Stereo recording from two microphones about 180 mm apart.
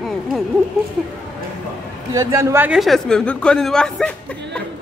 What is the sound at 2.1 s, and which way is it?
A man's voice, 15° right (ahead or behind).